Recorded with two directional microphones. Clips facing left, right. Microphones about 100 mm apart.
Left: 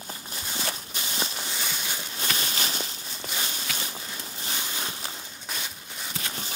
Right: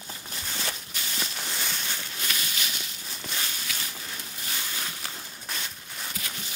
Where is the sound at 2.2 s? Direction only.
35° left (ahead or behind).